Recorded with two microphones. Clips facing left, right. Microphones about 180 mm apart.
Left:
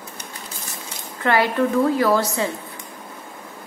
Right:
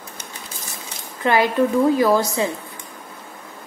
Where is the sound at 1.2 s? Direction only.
15° right (ahead or behind).